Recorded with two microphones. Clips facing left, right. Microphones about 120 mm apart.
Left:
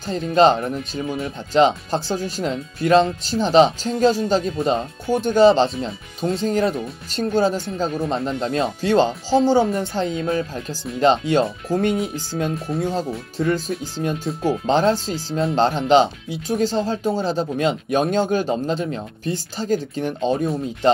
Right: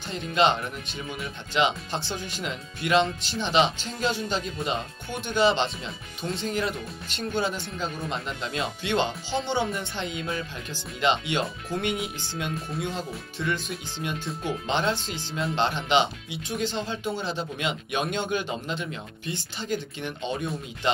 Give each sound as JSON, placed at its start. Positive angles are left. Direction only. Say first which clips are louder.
{"t": 0.0, "sound": "speech", "louder": "left 8 dB", "side_deg": 35}